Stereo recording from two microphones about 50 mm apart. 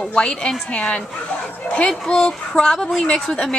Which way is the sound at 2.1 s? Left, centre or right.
Centre.